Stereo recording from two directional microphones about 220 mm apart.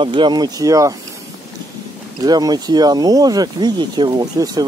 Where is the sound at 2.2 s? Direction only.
20° right (ahead or behind).